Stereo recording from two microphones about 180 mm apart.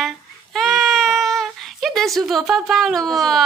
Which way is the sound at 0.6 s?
Centre (ahead or behind).